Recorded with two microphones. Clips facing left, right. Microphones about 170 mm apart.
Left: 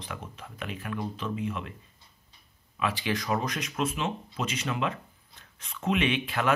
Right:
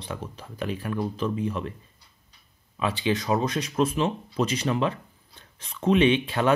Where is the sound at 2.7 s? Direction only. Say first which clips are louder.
Right 4 dB; 25° right (ahead or behind).